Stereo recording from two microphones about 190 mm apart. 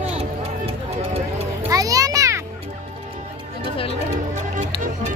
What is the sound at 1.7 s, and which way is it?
Children playing, 20° right (ahead or behind).